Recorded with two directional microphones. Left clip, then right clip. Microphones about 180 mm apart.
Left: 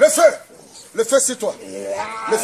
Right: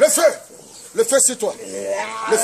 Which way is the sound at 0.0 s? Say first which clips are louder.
Left 2 dB; 25° right (ahead or behind).